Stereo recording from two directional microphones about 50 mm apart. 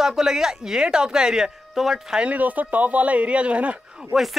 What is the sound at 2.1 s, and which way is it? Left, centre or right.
Speech, right.